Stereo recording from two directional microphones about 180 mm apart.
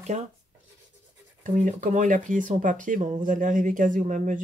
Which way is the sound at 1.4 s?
45° right (ahead or behind).